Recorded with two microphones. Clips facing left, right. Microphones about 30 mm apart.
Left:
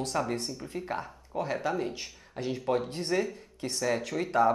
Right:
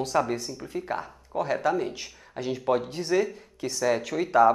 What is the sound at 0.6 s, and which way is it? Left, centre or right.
Speech, centre.